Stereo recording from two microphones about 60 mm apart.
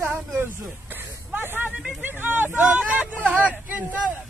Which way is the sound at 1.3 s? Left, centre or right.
Right.